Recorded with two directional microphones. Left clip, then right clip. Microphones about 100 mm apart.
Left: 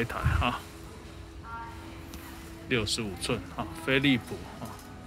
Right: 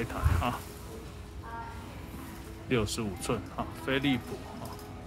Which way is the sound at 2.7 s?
30° right (ahead or behind).